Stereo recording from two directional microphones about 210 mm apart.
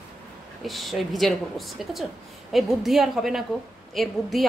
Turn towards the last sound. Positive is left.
turn(degrees=0)  # may be behind; listen again after turning